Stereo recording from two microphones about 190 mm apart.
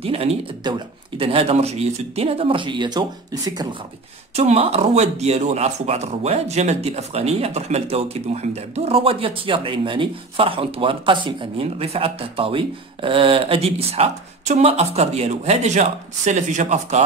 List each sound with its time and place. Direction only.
0.0 s speech: 30° right (ahead or behind)
4.4 s speech: 35° right (ahead or behind)